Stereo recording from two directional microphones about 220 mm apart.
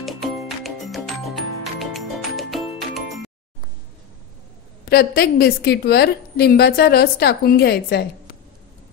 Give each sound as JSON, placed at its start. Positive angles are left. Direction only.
{"t": 0.0, "sound": "music", "side_deg": 0}
{"t": 4.8, "sound": "a woman's voice", "side_deg": 45}